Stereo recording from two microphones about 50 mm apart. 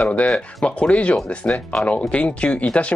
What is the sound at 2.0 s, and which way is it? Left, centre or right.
Speech, left.